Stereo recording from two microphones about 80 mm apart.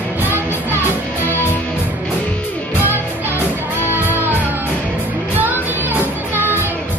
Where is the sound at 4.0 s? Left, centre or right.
Right.